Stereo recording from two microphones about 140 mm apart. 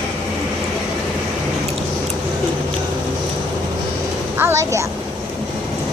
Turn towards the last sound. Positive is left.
turn(degrees=-20)  # may be behind; listen again after turning